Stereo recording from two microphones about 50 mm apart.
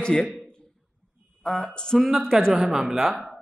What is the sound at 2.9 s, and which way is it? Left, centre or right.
Speech, centre.